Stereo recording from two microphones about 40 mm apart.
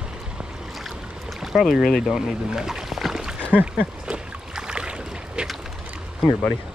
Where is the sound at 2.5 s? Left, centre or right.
Centre.